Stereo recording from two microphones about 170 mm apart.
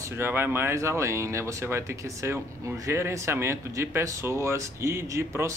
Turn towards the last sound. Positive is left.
turn(degrees=-15)  # may be behind; listen again after turning